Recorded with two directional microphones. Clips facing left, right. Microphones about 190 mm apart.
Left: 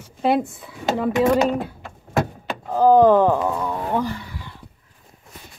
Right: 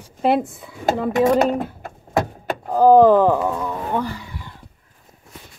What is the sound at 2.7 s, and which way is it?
Door, 10° right (ahead or behind).